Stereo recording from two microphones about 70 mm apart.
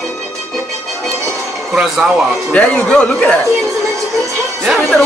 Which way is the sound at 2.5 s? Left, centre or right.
Centre.